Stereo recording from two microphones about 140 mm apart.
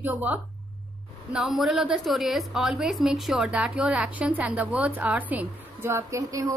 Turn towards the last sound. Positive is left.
turn(degrees=-25)  # may be behind; listen again after turning